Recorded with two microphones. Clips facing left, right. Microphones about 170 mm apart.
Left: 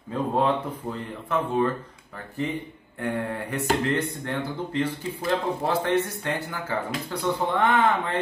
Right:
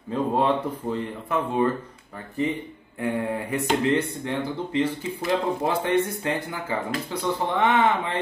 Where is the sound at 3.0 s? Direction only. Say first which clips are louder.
Right 2 dB; 10° right (ahead or behind).